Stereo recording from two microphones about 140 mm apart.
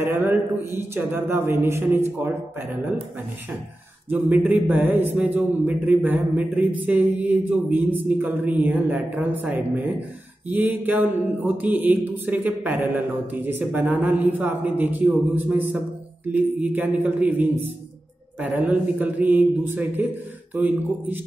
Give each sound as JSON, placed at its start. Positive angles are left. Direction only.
{"t": 0.0, "sound": "a man's voice", "side_deg": -15}
{"t": 4.1, "sound": "a man's voice", "side_deg": -10}